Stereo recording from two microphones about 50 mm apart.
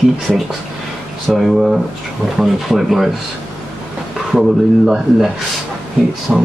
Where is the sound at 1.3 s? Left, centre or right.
Centre.